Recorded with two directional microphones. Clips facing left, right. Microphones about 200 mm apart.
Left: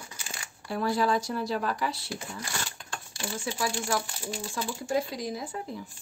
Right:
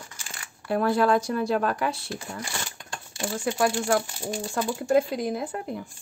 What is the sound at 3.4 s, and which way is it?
Speech, 55° right (ahead or behind).